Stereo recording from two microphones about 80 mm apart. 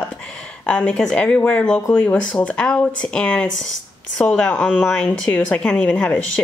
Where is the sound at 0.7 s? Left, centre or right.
Centre.